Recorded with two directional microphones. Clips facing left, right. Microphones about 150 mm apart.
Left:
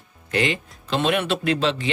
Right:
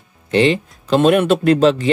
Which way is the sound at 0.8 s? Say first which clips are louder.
Right 9 dB; 45° right (ahead or behind).